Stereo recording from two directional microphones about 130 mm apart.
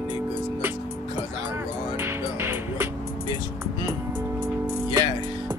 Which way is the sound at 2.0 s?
20° right (ahead or behind).